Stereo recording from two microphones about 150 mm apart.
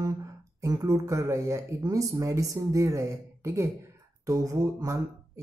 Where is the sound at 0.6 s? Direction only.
25° right (ahead or behind).